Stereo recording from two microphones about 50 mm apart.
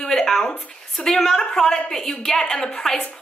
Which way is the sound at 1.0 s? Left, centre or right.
Centre.